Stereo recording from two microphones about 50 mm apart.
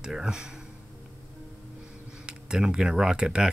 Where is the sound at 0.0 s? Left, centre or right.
Centre.